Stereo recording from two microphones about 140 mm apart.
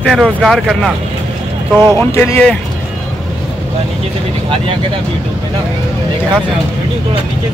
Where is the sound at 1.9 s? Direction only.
15° left (ahead or behind).